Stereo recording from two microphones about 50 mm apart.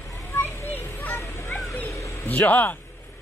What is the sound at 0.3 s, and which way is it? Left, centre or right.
Children playing, left.